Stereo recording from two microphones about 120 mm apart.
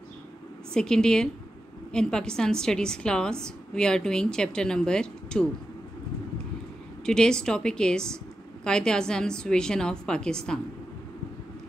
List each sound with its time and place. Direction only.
0.7 s a woman's voice: 5° left (ahead or behind)
7.1 s a woman's voice: 5° left (ahead or behind)